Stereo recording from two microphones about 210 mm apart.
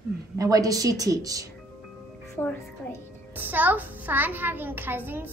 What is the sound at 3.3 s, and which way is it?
Speech, 10° right (ahead or behind).